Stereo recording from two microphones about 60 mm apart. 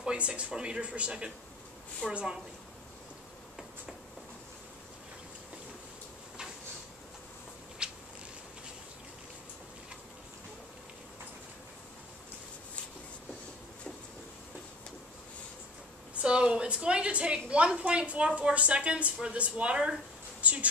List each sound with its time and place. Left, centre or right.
0.0 s speech: centre
2.0 s a woman's voice: centre
7.8 s a sound: centre
16.2 s a woman's voice: centre